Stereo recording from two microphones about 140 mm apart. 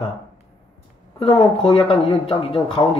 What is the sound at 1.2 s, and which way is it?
Speech, 35° left (ahead or behind).